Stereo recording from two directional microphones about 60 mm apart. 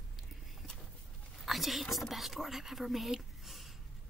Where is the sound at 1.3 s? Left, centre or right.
Centre.